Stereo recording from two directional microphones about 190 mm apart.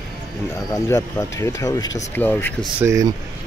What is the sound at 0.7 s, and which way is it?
Speech, 15° left (ahead or behind).